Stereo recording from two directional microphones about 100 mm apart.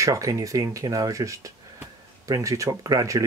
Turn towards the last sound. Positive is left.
turn(degrees=-35)  # may be behind; listen again after turning